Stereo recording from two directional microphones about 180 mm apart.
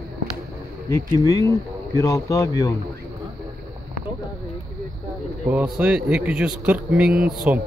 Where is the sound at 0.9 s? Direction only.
15° left (ahead or behind).